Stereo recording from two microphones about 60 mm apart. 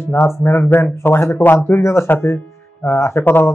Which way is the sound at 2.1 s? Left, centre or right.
Left.